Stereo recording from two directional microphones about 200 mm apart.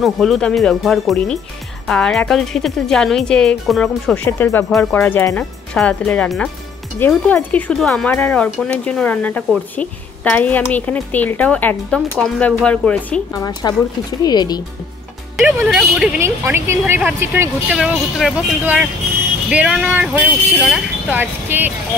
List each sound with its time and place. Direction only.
0.0 s a woman's voice: centre (ahead or behind)
13.4 s speech: 20° left (ahead or behind)
15.3 s speech: centre (ahead or behind)
16.2 s speech: 15° right (ahead or behind)
20.2 s a woman's voice: 10° left (ahead or behind)
20.7 s speech: 10° right (ahead or behind)